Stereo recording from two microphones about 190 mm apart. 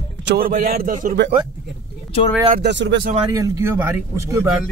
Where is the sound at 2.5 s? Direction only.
65° right (ahead or behind).